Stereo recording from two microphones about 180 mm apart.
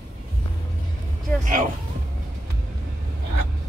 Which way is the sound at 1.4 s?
45° right (ahead or behind).